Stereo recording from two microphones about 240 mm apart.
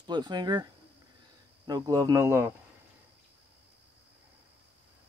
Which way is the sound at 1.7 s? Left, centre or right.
Centre.